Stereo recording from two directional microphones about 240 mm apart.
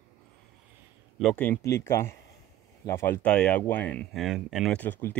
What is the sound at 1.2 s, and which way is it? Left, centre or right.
Speech, centre.